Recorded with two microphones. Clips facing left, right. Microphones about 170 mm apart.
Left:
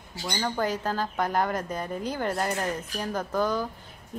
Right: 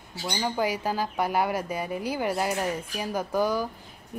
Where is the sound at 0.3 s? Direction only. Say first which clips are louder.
Right 1 dB; 10° right (ahead or behind).